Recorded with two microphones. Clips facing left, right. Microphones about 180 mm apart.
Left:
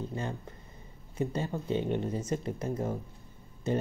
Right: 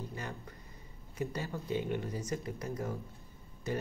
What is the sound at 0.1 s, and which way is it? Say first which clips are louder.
Speech: left 6 dB; 25° left (ahead or behind).